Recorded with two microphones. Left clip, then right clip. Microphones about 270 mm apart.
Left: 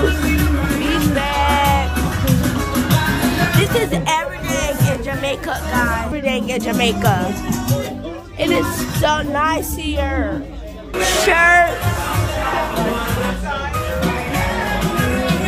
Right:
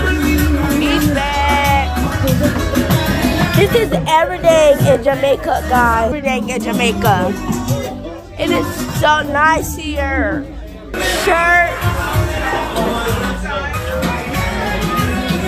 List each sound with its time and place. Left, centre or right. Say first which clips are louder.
0.8 s music: right 1 dB; centre
3.6 s speech: right 4 dB; centre
8.4 s speech: right 1 dB; centre
11.0 s music: even; centre